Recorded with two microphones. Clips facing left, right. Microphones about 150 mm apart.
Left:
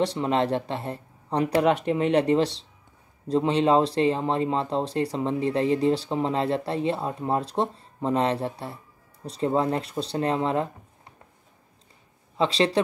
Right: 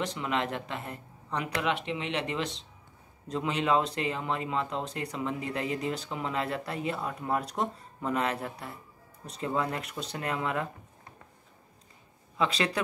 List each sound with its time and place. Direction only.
0.0 s speech: 35° left (ahead or behind)
12.4 s speech: 30° left (ahead or behind)